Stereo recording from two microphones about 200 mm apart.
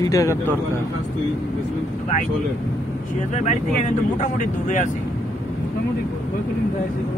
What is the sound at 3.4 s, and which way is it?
Speech, 35° left (ahead or behind).